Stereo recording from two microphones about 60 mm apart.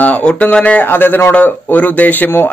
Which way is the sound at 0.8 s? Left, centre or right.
Left.